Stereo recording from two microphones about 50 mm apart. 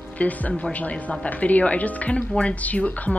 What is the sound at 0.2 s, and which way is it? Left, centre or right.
A woman's voice, left.